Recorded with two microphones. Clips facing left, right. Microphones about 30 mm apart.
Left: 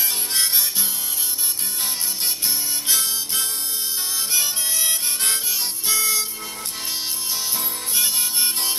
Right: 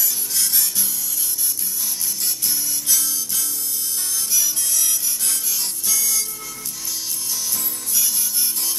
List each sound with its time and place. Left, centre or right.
0.0 s harmonica: left
2.4 s music: left
4.3 s harmonica: left
7.5 s music: left